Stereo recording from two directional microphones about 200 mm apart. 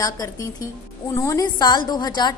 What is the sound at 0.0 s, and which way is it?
A woman's voice, 20° left (ahead or behind).